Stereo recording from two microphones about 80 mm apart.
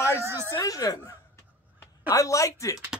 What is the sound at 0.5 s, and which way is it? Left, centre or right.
Speech, left.